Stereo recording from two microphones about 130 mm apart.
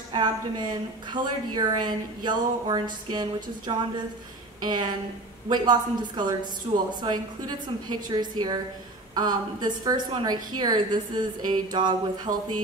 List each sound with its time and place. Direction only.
0.1 s a woman's voice: 35° right (ahead or behind)
6.7 s speech: 45° right (ahead or behind)
7.0 s a woman's voice: 35° right (ahead or behind)
12.3 s speech: 70° right (ahead or behind)